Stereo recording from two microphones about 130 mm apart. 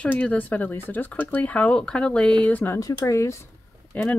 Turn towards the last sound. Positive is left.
turn(degrees=10)  # may be behind; listen again after turning